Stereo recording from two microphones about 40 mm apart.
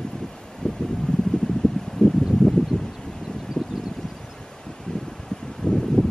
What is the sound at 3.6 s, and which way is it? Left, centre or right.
Vehicle, left.